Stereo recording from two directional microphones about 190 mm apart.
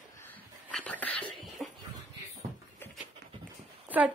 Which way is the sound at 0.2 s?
10° left (ahead or behind).